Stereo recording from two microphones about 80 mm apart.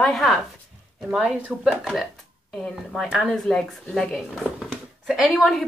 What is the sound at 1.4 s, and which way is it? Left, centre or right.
Speech, centre.